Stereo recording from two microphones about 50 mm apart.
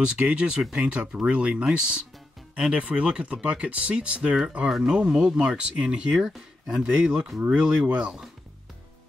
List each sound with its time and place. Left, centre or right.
0.0 s speech: centre
4.6 s speech: centre
4.9 s speech: centre